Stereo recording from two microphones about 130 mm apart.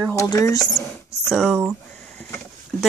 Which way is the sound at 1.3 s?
5° right (ahead or behind).